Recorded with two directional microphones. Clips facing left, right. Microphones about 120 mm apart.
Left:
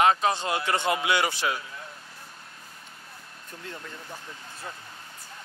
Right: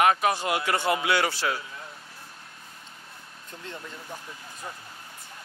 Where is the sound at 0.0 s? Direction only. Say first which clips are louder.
Even; 25° left (ahead or behind).